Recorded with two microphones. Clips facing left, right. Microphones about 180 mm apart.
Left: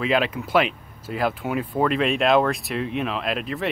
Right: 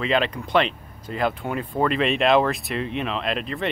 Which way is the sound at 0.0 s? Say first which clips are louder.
Left 1 dB; 5° left (ahead or behind).